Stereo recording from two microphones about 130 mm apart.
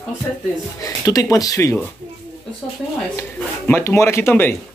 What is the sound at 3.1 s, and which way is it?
A man's voice, 15° left (ahead or behind).